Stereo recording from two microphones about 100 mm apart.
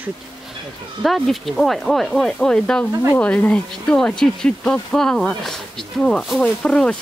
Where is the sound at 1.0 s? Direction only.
Centre (ahead or behind).